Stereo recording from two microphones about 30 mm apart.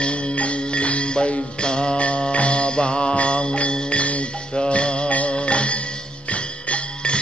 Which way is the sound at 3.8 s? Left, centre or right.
Left.